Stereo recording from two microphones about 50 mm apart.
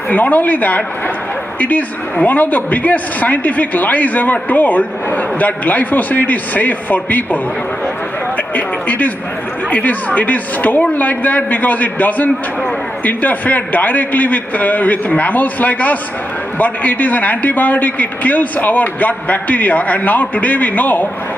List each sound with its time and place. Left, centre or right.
0.1 s speech: left
8.5 s speech: left